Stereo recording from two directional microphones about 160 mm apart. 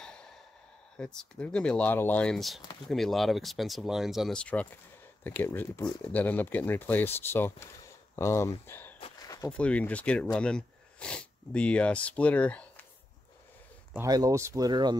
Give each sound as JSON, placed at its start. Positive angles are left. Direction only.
{"t": 0.0, "sound": "sigh", "side_deg": 5}
{"t": 0.9, "sound": "speech", "side_deg": 5}
{"t": 13.9, "sound": "speech", "side_deg": -20}